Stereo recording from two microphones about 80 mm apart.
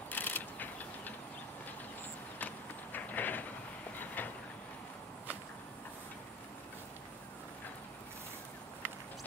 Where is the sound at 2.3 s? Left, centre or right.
Left.